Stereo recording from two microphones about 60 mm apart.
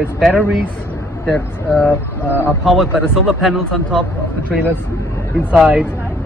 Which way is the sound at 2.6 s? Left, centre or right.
Centre.